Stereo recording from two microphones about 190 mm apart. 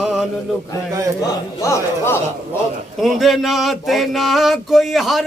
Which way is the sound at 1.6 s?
15° left (ahead or behind).